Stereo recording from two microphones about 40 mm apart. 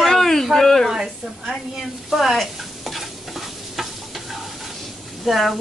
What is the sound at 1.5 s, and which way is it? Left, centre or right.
Stir, centre.